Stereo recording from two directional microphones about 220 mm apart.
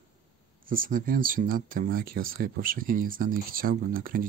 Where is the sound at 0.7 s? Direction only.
40° right (ahead or behind).